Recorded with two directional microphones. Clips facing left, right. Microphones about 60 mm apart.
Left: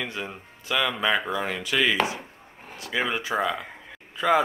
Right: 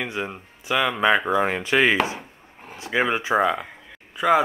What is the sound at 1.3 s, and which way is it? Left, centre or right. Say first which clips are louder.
Speech: right 6 dB; right.